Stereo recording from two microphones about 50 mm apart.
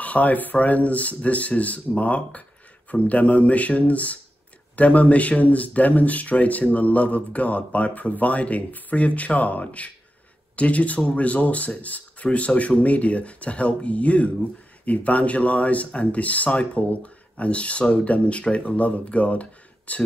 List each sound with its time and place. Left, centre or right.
0.0 s speech: left